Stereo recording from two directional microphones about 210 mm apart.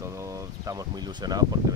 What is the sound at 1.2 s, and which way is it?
Speech, 20° right (ahead or behind).